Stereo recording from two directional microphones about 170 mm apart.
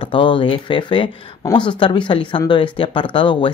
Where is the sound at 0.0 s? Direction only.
30° left (ahead or behind).